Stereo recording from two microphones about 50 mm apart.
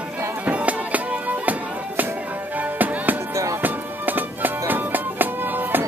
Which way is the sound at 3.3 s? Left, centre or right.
Right.